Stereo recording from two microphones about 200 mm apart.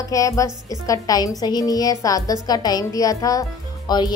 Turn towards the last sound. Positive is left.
turn(degrees=20)  # may be behind; listen again after turning